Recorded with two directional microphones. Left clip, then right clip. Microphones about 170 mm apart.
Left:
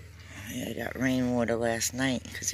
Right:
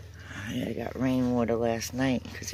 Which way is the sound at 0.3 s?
45° right (ahead or behind).